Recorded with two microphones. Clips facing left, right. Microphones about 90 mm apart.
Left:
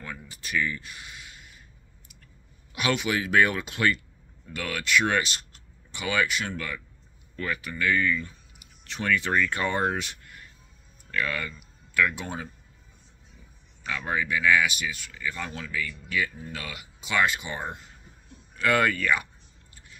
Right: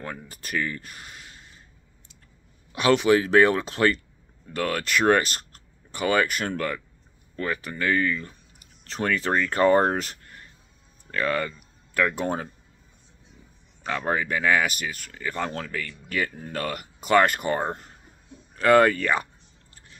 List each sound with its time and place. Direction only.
0.0 s speech: 45° right (ahead or behind)
2.7 s speech: 35° right (ahead or behind)
7.3 s speech: 35° right (ahead or behind)
13.8 s speech: 40° right (ahead or behind)
18.6 s speech: 35° right (ahead or behind)